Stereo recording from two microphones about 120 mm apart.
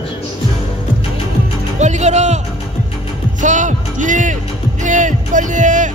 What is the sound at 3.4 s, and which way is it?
Speech, 90° right.